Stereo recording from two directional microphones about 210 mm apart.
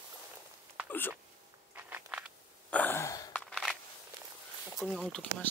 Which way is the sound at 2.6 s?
10° left (ahead or behind).